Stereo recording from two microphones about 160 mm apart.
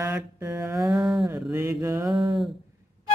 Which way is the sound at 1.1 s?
20° right (ahead or behind).